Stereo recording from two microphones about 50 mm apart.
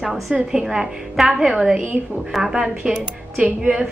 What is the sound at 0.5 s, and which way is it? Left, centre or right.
A woman's voice, centre.